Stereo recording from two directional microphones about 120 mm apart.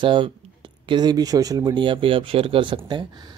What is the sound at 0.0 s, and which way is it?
Speech, 45° right (ahead or behind).